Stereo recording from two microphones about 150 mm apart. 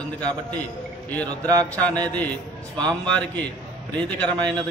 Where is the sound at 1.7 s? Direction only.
10° left (ahead or behind).